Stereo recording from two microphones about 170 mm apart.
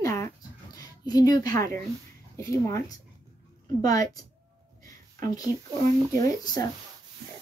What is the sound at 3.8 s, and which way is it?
Speech, 20° left (ahead or behind).